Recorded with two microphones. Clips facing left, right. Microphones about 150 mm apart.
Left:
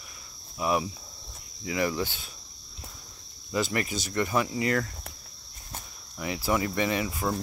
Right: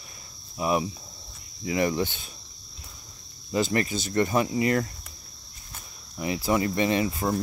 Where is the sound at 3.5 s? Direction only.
30° right (ahead or behind).